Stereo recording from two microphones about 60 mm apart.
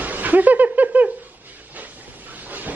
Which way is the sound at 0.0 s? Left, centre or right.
Right.